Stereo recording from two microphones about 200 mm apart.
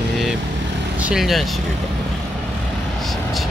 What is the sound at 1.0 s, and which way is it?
Speech, centre (ahead or behind).